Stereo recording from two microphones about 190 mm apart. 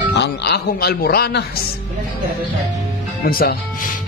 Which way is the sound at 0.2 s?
60° left (ahead or behind).